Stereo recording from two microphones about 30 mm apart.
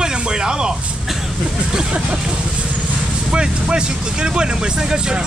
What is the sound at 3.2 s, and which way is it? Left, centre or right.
Speech, right.